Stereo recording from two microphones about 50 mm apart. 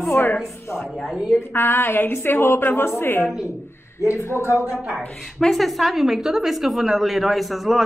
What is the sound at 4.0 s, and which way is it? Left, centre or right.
Speech, left.